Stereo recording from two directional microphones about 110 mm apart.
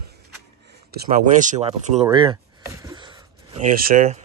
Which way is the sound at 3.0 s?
45° right (ahead or behind).